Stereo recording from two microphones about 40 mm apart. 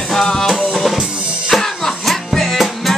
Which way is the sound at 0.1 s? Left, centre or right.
Centre.